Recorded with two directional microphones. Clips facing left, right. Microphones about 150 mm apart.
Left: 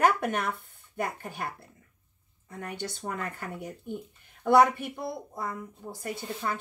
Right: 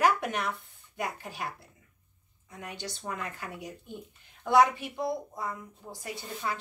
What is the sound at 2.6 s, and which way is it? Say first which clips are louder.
A woman's voice: left 3 dB; 55° left (ahead or behind).